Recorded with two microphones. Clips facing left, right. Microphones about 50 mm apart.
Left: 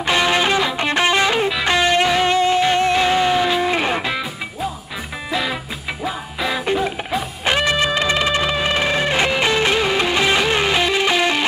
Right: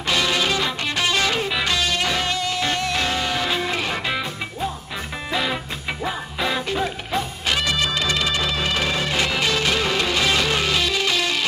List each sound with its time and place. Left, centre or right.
0.0 s music: left
5.3 s music: centre
6.6 s music: left